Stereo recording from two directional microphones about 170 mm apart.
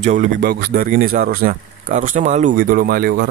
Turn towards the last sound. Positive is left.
turn(degrees=-60)  # may be behind; listen again after turning